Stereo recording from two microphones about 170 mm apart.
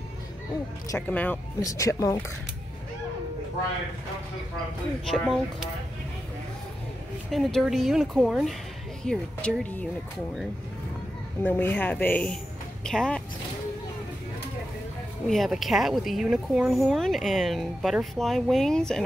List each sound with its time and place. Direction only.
0.8 s speech: 10° left (ahead or behind)
5.0 s a woman's voice: centre (ahead or behind)
7.2 s a woman's voice: centre (ahead or behind)
11.4 s a woman's voice: 10° left (ahead or behind)
15.2 s a woman's voice: centre (ahead or behind)